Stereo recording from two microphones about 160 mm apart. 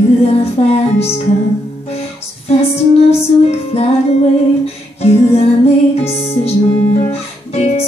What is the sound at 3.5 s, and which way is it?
Music, 40° left (ahead or behind).